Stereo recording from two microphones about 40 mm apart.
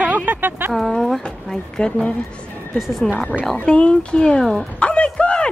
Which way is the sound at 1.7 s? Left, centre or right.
Centre.